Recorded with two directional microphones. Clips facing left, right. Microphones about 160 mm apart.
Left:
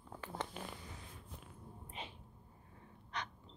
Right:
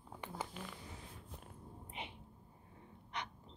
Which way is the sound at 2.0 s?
20° right (ahead or behind).